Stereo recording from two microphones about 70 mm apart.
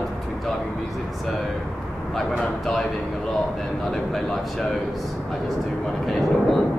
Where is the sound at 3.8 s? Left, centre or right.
Centre.